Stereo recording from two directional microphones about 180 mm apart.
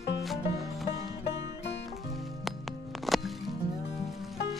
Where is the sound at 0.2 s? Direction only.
Centre (ahead or behind).